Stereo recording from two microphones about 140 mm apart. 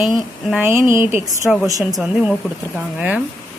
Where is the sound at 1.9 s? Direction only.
5° right (ahead or behind).